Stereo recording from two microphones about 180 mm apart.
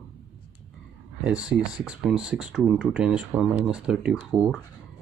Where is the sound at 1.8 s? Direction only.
5° right (ahead or behind).